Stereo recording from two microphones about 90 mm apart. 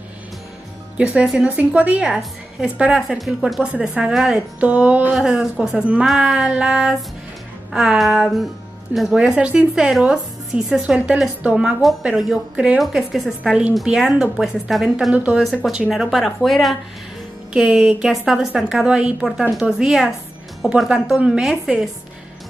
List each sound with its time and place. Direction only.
0.9 s speech: 10° right (ahead or behind)
4.6 s speech: 15° right (ahead or behind)
5.1 s a woman's voice: 5° right (ahead or behind)
15.1 s speech: 15° right (ahead or behind)
15.9 s a woman's voice: 5° right (ahead or behind)